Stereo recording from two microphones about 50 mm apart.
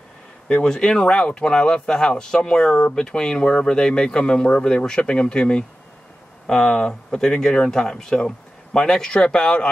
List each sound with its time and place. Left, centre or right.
0.7 s speech: centre